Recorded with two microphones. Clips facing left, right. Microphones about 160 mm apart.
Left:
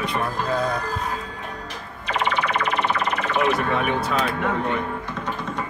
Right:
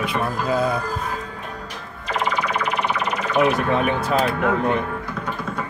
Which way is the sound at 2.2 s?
10° right (ahead or behind).